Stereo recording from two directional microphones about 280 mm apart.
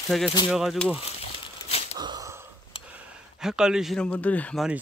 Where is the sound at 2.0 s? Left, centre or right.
Centre.